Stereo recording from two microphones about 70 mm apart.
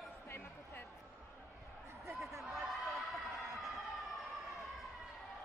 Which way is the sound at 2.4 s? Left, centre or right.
Centre.